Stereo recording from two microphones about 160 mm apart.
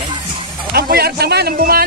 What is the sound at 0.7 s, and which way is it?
Speech, 75° right (ahead or behind).